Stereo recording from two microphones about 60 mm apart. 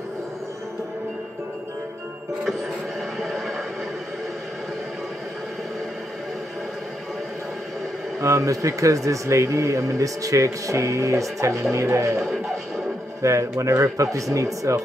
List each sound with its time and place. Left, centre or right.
3.2 s a sound: centre
8.2 s a man's voice: right
12.2 s music: centre
13.2 s a man's voice: right